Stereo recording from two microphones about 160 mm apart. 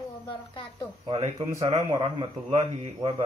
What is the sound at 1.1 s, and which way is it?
Speech, 40° right (ahead or behind).